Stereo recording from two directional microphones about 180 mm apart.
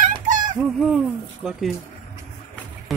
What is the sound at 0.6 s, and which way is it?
Speech, 5° right (ahead or behind).